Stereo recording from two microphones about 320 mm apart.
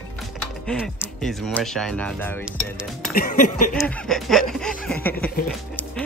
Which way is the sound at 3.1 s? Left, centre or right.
Left.